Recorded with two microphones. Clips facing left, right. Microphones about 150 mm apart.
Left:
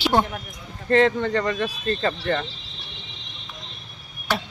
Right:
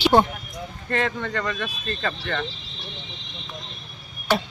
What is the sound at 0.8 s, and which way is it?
Speech, 30° left (ahead or behind).